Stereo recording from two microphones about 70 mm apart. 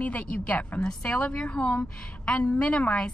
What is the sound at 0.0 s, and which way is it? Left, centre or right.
A woman's voice, left.